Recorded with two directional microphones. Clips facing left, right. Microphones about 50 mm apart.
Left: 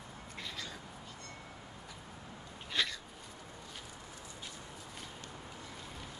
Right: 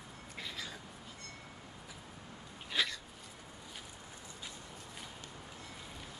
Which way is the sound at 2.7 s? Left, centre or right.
Centre.